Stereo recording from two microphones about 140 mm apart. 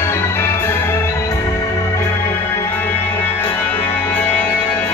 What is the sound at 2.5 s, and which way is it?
Music, 15° left (ahead or behind).